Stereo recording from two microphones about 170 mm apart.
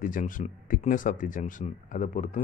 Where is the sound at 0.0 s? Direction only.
50° left (ahead or behind).